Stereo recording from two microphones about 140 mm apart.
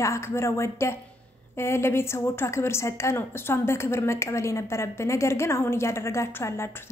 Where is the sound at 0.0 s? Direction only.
20° left (ahead or behind).